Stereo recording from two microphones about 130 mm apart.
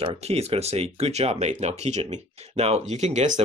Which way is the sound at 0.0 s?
50° right (ahead or behind).